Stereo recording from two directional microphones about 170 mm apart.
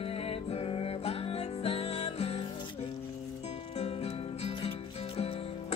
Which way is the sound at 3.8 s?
35° left (ahead or behind).